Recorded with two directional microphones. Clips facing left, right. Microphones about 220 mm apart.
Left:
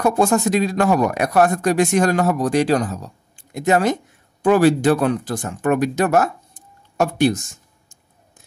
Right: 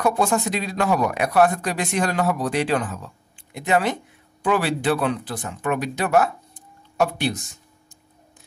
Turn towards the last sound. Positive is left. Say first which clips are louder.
# right 1 dB
turn(degrees=45)  # may be behind; listen again after turning